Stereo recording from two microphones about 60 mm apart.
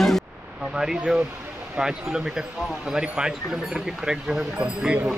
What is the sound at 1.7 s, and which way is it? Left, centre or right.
Speech, centre.